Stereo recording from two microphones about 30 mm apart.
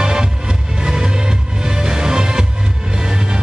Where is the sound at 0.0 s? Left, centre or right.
Right.